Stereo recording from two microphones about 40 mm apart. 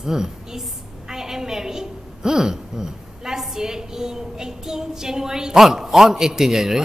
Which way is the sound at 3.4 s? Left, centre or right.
Centre.